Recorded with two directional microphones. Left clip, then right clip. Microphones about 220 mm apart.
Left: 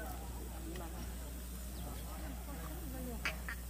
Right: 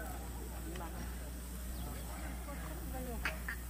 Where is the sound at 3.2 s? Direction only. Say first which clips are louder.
Even; 55° right (ahead or behind).